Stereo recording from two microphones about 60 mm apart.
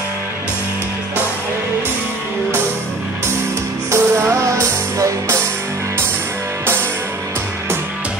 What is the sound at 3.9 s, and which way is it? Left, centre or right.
Music, right.